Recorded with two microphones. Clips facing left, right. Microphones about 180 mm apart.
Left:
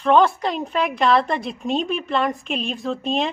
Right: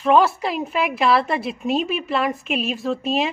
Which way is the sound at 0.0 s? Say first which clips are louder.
Even; 5° right (ahead or behind).